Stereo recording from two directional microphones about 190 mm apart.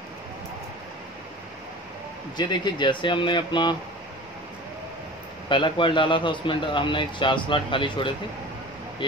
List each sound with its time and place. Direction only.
2.3 s a man's voice: 20° left (ahead or behind)
5.5 s a man's voice: 25° left (ahead or behind)